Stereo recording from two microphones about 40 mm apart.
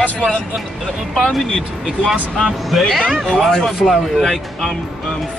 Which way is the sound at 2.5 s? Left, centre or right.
Centre.